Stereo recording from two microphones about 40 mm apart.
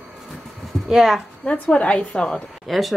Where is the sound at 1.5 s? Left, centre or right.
Left.